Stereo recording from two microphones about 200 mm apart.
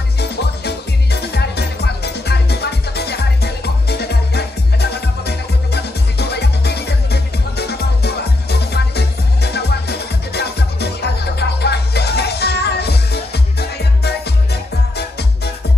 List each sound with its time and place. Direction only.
0.2 s music: 55° left (ahead or behind)